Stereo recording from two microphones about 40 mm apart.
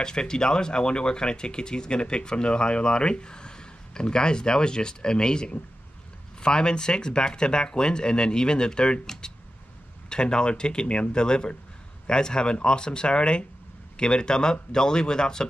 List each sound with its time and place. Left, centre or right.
0.0 s speech: centre
9.0 s speech: centre